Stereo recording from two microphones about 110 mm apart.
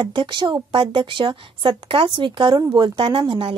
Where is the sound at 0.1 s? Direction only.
45° right (ahead or behind).